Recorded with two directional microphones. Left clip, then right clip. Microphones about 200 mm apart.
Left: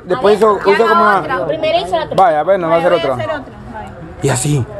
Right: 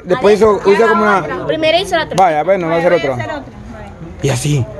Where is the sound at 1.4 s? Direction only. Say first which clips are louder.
Right 2 dB; 55° right (ahead or behind).